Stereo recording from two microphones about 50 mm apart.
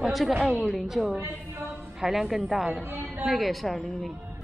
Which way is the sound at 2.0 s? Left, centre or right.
Centre.